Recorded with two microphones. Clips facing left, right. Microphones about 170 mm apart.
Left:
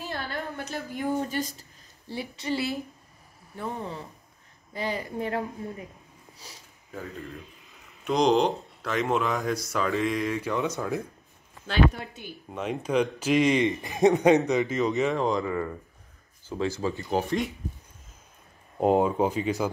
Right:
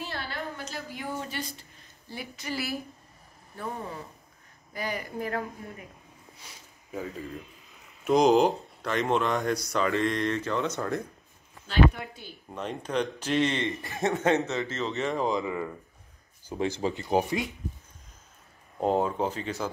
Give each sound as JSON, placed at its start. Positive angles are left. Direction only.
{"t": 0.3, "sound": "a sound", "side_deg": 50}
{"t": 1.3, "sound": "a woman's voice", "side_deg": 40}
{"t": 4.7, "sound": "a woman's voice", "side_deg": 25}
{"t": 6.4, "sound": "speech", "side_deg": 35}
{"t": 6.9, "sound": "speech", "side_deg": -5}
{"t": 12.4, "sound": "a man's voice", "side_deg": 5}
{"t": 15.1, "sound": "speech", "side_deg": 0}
{"t": 15.4, "sound": "speech", "side_deg": -15}
{"t": 18.8, "sound": "a man's voice", "side_deg": 10}